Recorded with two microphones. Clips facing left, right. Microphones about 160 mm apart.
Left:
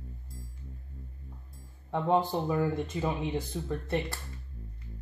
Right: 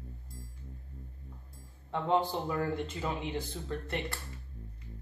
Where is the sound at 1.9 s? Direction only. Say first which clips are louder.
Left 3 dB; 15° left (ahead or behind).